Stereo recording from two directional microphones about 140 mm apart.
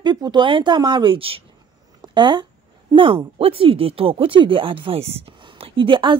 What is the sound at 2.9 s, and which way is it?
Speech, 40° right (ahead or behind).